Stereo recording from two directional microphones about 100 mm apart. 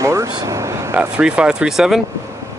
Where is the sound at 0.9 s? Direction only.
15° right (ahead or behind).